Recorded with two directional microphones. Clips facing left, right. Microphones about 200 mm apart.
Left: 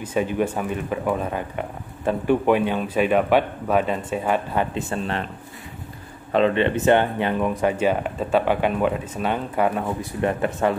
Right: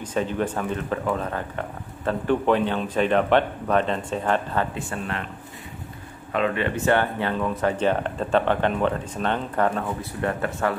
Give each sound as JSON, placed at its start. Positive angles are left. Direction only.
{"t": 0.0, "sound": "speech", "side_deg": 10}
{"t": 4.7, "sound": "speech", "side_deg": 25}
{"t": 6.3, "sound": "speech", "side_deg": 25}